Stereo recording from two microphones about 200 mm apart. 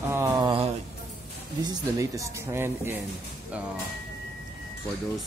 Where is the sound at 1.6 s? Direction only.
20° right (ahead or behind).